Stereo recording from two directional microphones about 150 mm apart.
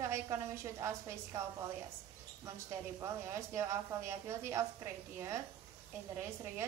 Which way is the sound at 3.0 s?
20° right (ahead or behind).